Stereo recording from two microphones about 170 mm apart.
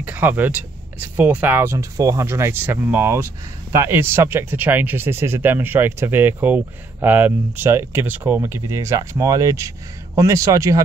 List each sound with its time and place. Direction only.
0.0 s speech: 10° right (ahead or behind)